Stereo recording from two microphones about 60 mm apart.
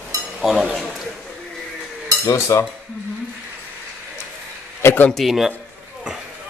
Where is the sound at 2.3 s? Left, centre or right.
Left.